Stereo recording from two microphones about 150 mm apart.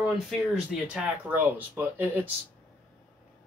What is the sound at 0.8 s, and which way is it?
Speech, 10° right (ahead or behind).